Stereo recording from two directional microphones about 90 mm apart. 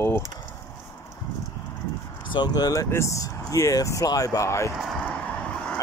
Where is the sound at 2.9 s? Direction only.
35° left (ahead or behind).